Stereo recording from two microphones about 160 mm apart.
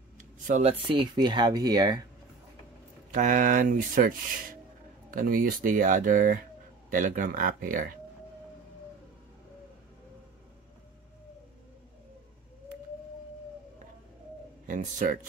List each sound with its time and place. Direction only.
0.4 s speech: 50° right (ahead or behind); by 2.0 s 25° right (ahead or behind)
3.1 s speech: 55° right (ahead or behind)
14.7 s speech: 55° right (ahead or behind)